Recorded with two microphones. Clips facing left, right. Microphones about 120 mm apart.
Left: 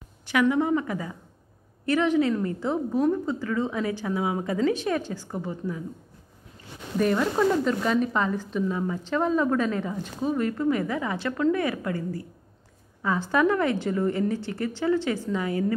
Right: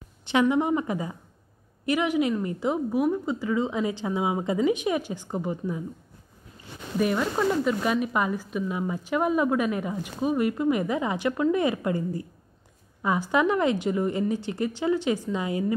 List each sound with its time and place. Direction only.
0.2 s a woman's voice: 25° right (ahead or behind)
7.0 s speech: 5° right (ahead or behind)